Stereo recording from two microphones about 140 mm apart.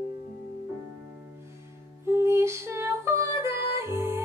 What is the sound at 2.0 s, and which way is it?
Female singing, 20° right (ahead or behind).